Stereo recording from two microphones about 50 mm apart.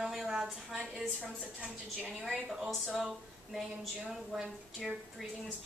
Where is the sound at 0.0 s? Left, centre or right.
Centre.